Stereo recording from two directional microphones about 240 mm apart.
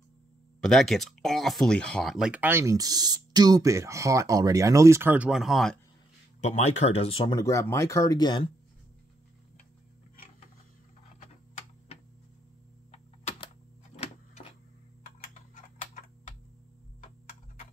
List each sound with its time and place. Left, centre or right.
0.6 s speech: centre
6.4 s speech: left
11.1 s typing: left
13.9 s a sound: left
15.1 s tick-tock: left